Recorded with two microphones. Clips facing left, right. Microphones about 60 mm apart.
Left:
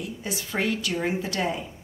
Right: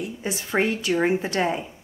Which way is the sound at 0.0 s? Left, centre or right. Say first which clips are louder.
Right 3 dB; right.